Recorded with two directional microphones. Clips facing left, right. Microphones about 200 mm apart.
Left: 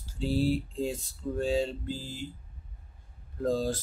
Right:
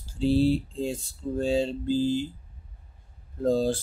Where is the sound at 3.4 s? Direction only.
30° right (ahead or behind).